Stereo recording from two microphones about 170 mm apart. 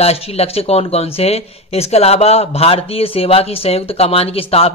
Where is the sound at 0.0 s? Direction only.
35° left (ahead or behind).